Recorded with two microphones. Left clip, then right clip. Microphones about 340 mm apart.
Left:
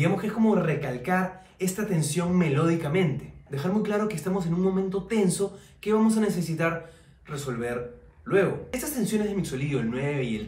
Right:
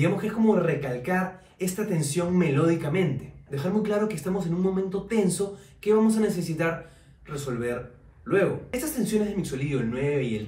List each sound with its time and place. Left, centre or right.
0.0 s a man's voice: centre